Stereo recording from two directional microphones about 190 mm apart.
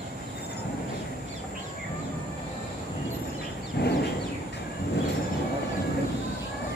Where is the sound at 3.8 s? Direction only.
55° left (ahead or behind).